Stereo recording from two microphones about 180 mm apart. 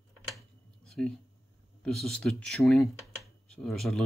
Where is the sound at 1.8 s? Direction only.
5° left (ahead or behind).